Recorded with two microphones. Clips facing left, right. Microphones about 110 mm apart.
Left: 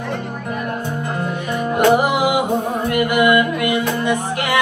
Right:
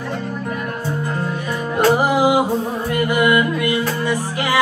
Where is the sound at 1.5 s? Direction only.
20° left (ahead or behind).